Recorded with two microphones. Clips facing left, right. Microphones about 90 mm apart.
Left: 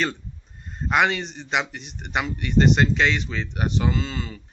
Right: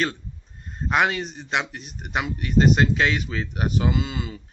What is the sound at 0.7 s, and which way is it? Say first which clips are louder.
Speech: left 1 dB; centre (ahead or behind).